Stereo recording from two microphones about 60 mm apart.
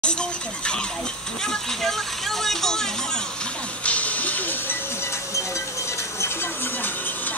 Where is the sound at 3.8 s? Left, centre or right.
Left.